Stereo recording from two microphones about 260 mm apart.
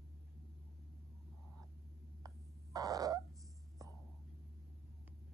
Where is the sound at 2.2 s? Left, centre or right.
Centre.